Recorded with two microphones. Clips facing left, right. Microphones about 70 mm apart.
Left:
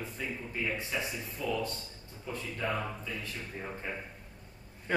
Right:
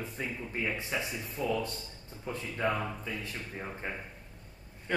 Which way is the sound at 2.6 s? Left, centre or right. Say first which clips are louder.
Right 3 dB; right.